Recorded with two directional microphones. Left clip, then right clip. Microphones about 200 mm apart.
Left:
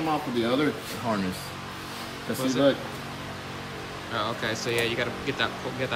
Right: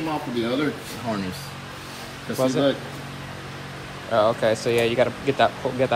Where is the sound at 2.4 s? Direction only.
Centre (ahead or behind).